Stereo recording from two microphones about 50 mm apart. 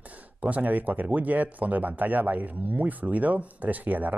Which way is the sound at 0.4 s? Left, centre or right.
Right.